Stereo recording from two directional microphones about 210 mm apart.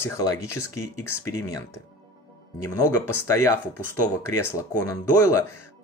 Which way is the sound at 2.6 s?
15° left (ahead or behind).